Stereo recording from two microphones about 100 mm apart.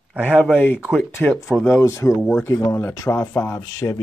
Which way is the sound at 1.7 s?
30° left (ahead or behind).